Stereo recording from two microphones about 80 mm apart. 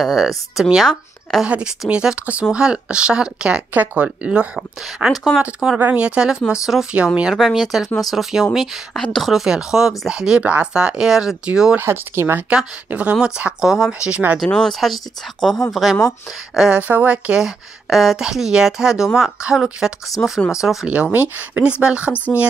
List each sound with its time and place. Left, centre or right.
0.0 s speech: centre
1.4 s speech: centre
11.7 s speech: right
12.4 s speech: centre
14.4 s speech: centre
16.8 s speech: centre
17.4 s speech: centre
20.2 s speech: centre
20.8 s speech: centre
22.1 s speech: left